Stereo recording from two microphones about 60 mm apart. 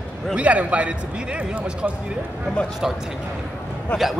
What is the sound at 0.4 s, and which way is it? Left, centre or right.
A man's voice, right.